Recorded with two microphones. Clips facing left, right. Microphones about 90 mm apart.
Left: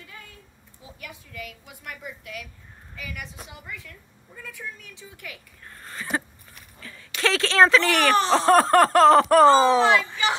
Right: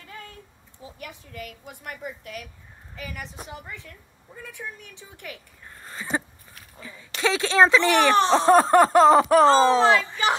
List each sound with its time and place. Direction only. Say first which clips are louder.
0.9 s a woman's voice: right 1 dB; 40° right (ahead or behind)
5.8 s a sound: even; 10° right (ahead or behind)
6.8 s speech: even; 15° right (ahead or behind)
8.5 s speech: even; 5° right (ahead or behind)
9.8 s a woman's voice: right 1 dB; 35° right (ahead or behind)